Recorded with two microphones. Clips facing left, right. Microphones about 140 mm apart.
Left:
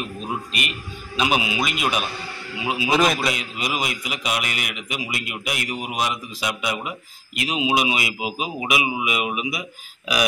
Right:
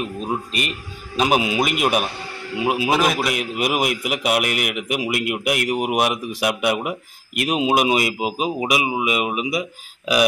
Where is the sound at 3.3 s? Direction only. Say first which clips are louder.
Right 6 dB; 60° right (ahead or behind).